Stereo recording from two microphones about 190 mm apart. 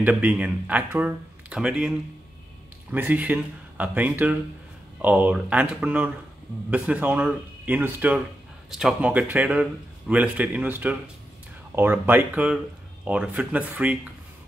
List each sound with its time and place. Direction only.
0.0 s a man's voice: 10° right (ahead or behind)